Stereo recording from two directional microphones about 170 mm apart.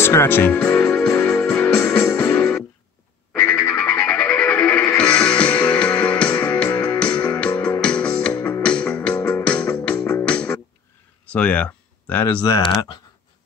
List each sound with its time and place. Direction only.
0.0 s music: 15° left (ahead or behind)
3.7 s music: 10° left (ahead or behind)
11.3 s a sound: 10° left (ahead or behind)
12.3 s speech: 20° left (ahead or behind)